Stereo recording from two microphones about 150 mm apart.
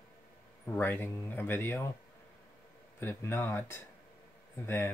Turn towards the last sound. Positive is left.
turn(degrees=15)  # may be behind; listen again after turning